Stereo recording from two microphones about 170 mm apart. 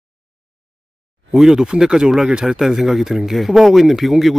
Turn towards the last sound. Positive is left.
turn(degrees=0)  # may be behind; listen again after turning